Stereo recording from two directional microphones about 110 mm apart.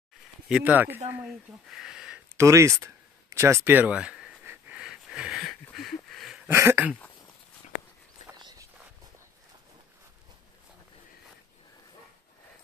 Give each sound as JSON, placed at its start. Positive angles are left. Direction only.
{"t": 0.5, "sound": "speech", "side_deg": -10}
{"t": 1.2, "sound": "speech", "side_deg": -5}
{"t": 2.3, "sound": "speech", "side_deg": -25}
{"t": 4.7, "sound": "wheeze", "side_deg": -10}
{"t": 5.4, "sound": "a sound", "side_deg": 0}
{"t": 6.5, "sound": "dog", "side_deg": -25}
{"t": 8.4, "sound": "walk", "side_deg": -40}